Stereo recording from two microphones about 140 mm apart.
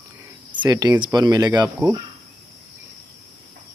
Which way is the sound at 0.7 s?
30° right (ahead or behind).